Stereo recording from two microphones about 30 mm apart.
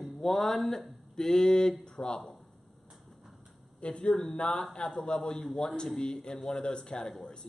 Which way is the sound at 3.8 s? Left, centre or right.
Left.